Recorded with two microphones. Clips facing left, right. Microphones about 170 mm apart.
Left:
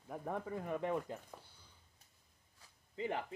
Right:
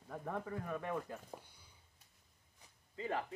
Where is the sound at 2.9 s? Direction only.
25° left (ahead or behind).